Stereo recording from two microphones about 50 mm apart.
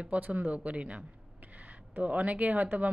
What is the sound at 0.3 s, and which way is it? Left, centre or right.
A woman's voice, right.